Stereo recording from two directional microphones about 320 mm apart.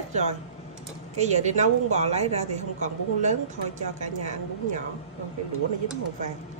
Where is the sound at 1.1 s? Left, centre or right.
Right.